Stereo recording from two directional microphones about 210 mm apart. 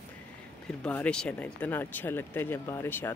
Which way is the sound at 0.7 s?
5° left (ahead or behind).